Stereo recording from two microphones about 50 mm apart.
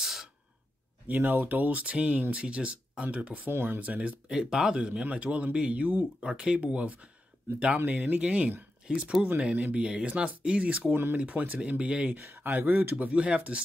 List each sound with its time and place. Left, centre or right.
0.0 s a sound: centre
1.0 s speech: right
3.4 s speech: right
3.8 s speech: right
4.3 s speech: centre
8.8 s speech: centre
12.2 s speech: right
12.4 s speech: right
12.9 s speech: right